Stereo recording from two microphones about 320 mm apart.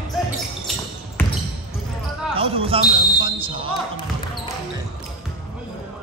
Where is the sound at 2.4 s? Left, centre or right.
Centre.